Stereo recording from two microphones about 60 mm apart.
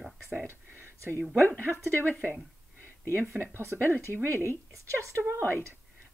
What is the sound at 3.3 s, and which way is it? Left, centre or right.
Speech, right.